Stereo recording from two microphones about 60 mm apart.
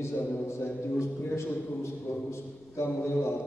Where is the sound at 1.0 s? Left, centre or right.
Left.